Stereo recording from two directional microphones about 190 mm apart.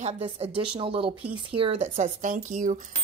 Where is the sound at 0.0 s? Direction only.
30° right (ahead or behind).